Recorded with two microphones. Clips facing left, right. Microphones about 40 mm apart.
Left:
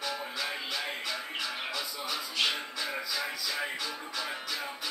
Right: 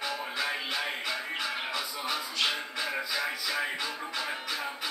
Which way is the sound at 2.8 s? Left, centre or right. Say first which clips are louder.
Right 3 dB; centre.